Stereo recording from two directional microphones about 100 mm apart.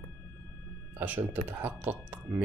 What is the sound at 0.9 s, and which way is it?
Speech, 15° right (ahead or behind).